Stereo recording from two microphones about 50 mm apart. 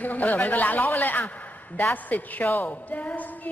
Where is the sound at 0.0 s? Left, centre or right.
Left.